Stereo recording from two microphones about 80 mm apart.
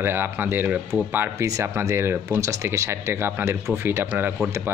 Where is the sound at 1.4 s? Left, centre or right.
Right.